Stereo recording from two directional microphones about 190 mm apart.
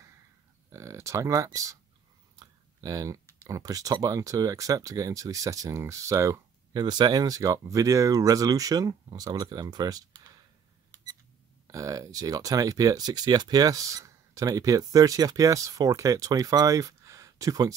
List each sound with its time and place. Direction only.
0.7 s speech: 15° right (ahead or behind)
11.6 s speech: 15° right (ahead or behind)